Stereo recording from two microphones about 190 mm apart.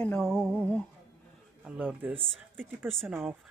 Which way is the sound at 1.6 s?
5° right (ahead or behind).